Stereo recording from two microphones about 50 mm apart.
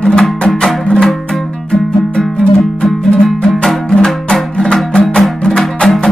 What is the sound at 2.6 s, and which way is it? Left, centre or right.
Music, centre.